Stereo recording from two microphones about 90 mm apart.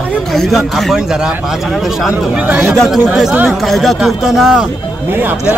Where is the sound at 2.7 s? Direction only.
Centre (ahead or behind).